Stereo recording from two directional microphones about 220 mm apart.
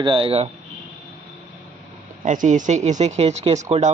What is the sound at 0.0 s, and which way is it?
Speech, 25° right (ahead or behind).